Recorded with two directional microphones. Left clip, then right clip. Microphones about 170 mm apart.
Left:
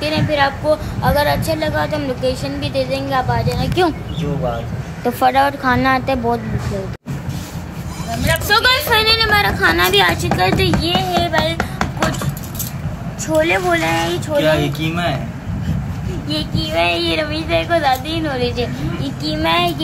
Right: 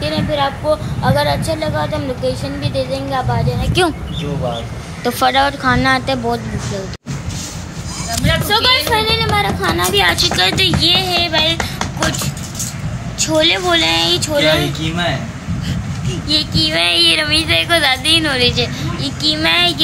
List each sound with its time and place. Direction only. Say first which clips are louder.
0.0 s a woman's voice: left 1 dB; 5° left (ahead or behind)
3.8 s speech: right 1 dB; 30° right (ahead or behind)
5.0 s a woman's voice: even; centre (ahead or behind)
8.5 s a woman's voice: even; 10° left (ahead or behind)
13.2 s a sound: right 2 dB; 15° right (ahead or behind)
16.3 s a sound: right 7 dB; 5° right (ahead or behind)
18.5 s a woman's voice: right 3 dB; centre (ahead or behind)